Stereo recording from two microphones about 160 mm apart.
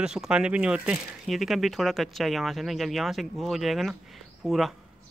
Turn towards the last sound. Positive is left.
turn(degrees=0)  # may be behind; listen again after turning